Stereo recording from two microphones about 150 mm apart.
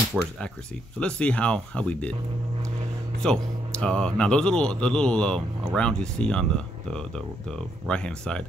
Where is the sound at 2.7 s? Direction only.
45° right (ahead or behind).